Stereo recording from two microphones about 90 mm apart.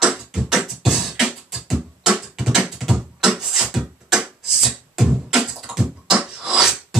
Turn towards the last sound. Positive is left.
turn(degrees=-5)  # may be behind; listen again after turning